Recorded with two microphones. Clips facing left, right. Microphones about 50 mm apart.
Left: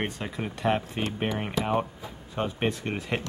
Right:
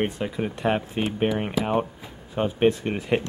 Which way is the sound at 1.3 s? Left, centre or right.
Centre.